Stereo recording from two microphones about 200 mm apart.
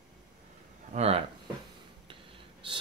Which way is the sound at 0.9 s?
30° right (ahead or behind).